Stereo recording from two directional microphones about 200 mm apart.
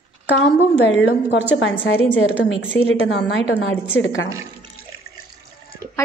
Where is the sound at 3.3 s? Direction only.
65° left (ahead or behind).